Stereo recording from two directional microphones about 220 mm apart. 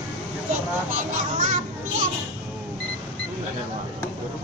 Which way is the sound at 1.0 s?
35° right (ahead or behind).